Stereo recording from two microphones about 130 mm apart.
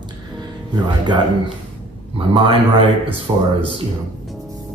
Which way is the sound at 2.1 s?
40° right (ahead or behind).